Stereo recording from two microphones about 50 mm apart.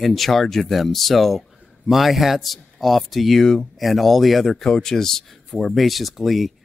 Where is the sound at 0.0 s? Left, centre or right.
Centre.